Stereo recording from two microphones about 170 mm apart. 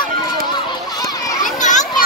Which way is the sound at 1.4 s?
45° left (ahead or behind).